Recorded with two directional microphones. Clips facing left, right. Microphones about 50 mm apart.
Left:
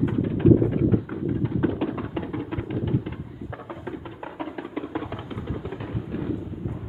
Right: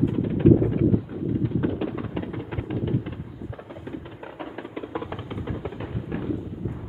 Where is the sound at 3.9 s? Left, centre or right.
Centre.